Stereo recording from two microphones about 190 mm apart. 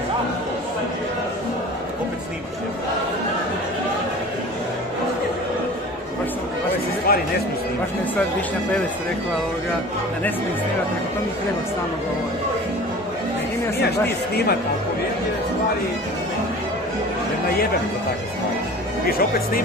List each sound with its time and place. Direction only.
7.1 s speech: 55° left (ahead or behind)
19.0 s speech: 50° left (ahead or behind)